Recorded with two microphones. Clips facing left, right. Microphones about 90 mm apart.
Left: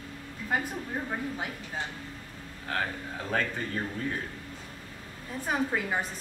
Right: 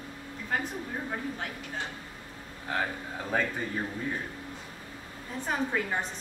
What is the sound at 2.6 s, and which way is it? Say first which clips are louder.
Speech: right 1 dB; 10° right (ahead or behind).